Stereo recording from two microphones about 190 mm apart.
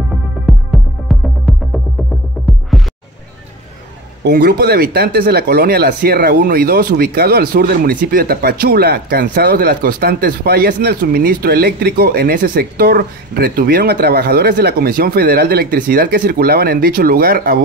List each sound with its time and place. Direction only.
0.5 s music: centre (ahead or behind)
4.2 s speech: 55° right (ahead or behind)